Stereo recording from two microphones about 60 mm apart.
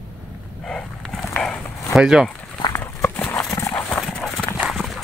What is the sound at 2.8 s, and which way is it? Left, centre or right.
Walk, left.